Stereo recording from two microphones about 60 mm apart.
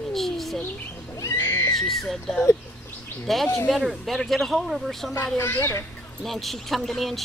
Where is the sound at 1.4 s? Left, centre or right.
Left.